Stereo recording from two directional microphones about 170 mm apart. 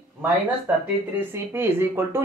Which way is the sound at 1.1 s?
15° right (ahead or behind).